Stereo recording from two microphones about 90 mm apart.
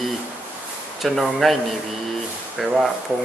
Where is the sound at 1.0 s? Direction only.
Centre (ahead or behind).